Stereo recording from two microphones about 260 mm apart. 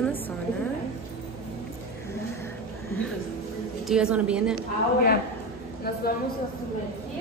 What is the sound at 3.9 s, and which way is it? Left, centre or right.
Speech, centre.